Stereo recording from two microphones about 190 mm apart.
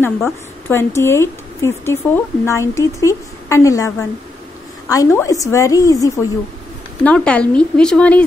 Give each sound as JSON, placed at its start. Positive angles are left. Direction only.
{"t": 0.0, "sound": "a woman's voice", "side_deg": 10}
{"t": 7.1, "sound": "speech", "side_deg": 5}